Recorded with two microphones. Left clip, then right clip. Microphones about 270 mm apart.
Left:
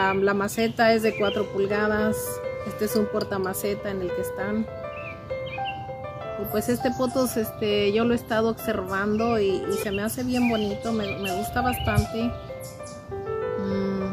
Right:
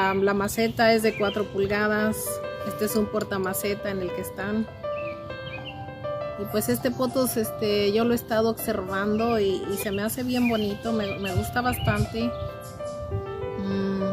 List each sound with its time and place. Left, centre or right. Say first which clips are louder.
0.0 s speech: left 1 dB; centre
6.5 s speech: left 1 dB; centre
13.7 s music: left 1 dB; centre